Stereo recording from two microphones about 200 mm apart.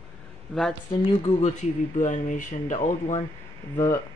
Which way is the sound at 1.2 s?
35° left (ahead or behind).